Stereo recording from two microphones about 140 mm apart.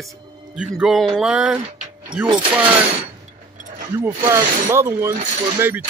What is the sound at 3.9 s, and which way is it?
Speech, 20° right (ahead or behind).